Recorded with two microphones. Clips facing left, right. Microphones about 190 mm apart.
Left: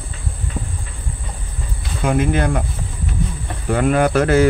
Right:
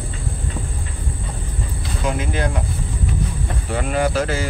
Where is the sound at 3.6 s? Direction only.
55° left (ahead or behind).